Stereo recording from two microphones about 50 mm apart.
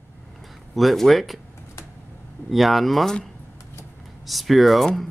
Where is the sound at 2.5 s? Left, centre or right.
Centre.